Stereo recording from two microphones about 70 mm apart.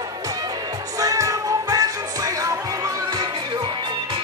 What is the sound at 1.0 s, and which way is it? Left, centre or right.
Music, right.